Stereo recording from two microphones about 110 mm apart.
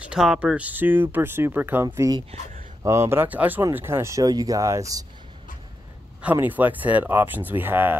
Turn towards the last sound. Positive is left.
turn(degrees=-20)  # may be behind; listen again after turning